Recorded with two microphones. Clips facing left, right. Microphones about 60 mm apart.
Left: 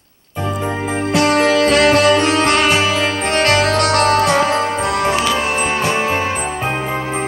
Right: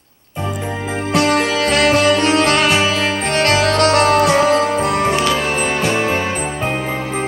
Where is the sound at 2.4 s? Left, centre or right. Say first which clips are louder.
Even; centre.